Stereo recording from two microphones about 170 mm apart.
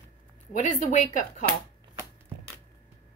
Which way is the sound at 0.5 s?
45° left (ahead or behind).